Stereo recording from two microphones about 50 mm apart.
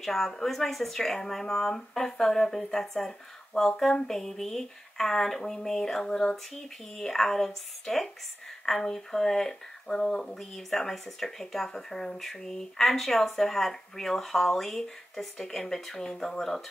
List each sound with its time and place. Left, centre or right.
0.0 s speech: centre
7.0 s speech: centre